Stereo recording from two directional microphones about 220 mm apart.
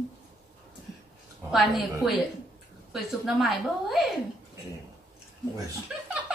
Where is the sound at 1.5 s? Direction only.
Centre (ahead or behind).